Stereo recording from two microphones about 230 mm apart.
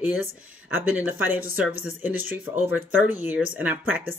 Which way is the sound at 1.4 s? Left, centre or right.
Right.